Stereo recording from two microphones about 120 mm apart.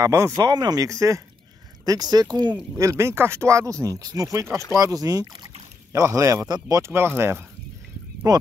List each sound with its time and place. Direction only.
0.0 s speech: 25° right (ahead or behind)
0.4 s speech: 35° right (ahead or behind)
2.8 s speech: 25° right (ahead or behind)
8.3 s speech: 30° right (ahead or behind)